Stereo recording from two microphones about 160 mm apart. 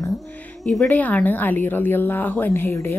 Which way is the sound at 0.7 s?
5° left (ahead or behind).